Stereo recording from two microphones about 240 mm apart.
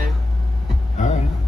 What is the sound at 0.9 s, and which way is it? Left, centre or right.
Music, left.